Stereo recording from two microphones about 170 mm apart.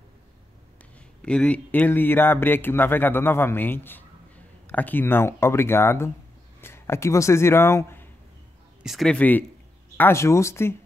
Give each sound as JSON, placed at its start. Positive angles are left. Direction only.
{"t": 1.2, "sound": "speech", "side_deg": 5}
{"t": 8.8, "sound": "a man's voice", "side_deg": 0}